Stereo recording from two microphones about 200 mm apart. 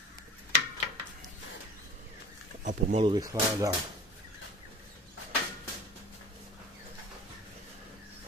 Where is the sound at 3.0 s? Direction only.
20° right (ahead or behind).